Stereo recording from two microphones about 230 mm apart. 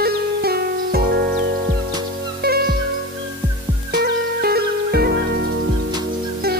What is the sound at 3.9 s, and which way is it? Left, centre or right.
Music, right.